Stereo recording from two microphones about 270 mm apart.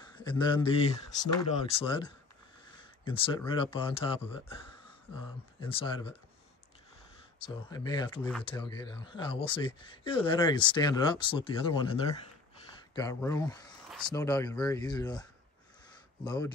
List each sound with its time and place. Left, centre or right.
0.0 s speech: centre
7.3 s speech: centre
12.9 s speech: centre
13.8 s a sound: centre
14.1 s speech: centre
16.3 s speech: centre